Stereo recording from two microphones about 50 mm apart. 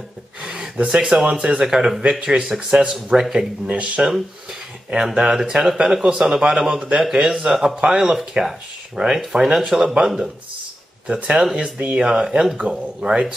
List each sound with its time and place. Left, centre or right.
0.4 s gasp: centre
0.7 s speech: centre
3.6 s speech: right
4.5 s a sound: centre
6.0 s speech: centre
11.1 s speech: right